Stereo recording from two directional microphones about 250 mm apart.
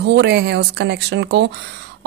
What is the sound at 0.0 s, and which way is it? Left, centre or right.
Speech, right.